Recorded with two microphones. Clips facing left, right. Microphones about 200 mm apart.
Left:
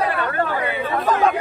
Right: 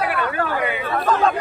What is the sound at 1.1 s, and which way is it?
Speech, 15° left (ahead or behind).